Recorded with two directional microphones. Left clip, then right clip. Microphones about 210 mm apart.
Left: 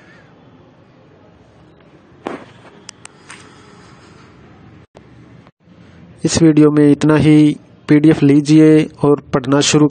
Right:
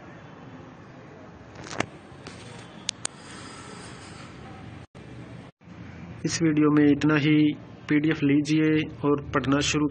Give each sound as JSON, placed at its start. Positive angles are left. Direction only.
{"t": 6.2, "sound": "a man's voice", "side_deg": 55}